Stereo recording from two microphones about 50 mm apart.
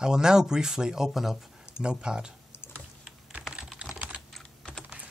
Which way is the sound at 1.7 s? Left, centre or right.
Centre.